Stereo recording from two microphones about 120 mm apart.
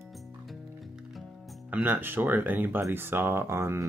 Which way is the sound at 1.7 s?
15° right (ahead or behind).